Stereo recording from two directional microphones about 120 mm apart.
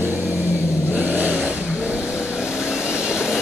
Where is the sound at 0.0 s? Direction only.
15° right (ahead or behind).